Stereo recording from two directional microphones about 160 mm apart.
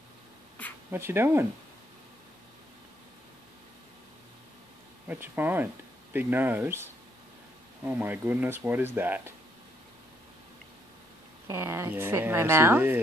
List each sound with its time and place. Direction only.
0.9 s a woman's voice: 15° right (ahead or behind)
5.0 s a woman's voice: 10° right (ahead or behind)
11.4 s a woman's voice: 15° right (ahead or behind)